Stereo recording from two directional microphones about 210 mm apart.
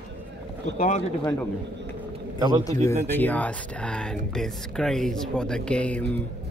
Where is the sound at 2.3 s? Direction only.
20° right (ahead or behind).